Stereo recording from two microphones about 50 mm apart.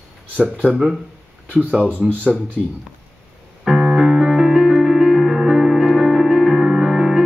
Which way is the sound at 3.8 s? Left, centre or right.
Centre.